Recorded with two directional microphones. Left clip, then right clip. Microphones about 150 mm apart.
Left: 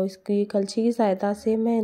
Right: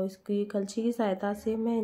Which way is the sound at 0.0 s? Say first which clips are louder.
Left 6 dB; 35° left (ahead or behind).